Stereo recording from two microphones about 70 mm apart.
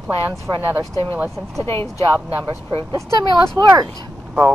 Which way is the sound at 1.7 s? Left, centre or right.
Left.